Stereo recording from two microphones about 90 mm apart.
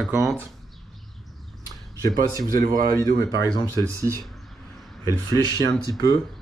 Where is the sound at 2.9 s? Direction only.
45° left (ahead or behind).